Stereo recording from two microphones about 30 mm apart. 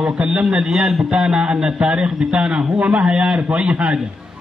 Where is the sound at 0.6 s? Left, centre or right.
Centre.